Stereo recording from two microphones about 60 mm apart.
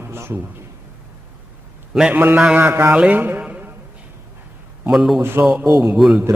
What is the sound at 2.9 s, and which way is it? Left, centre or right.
Speech, right.